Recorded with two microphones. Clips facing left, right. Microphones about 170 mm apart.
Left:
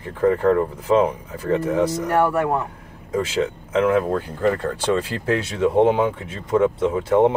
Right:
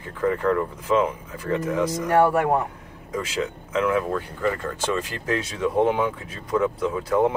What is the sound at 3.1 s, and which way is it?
Speech, 30° left (ahead or behind).